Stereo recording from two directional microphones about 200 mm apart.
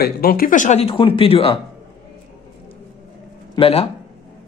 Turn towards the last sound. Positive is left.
turn(degrees=30)  # may be behind; listen again after turning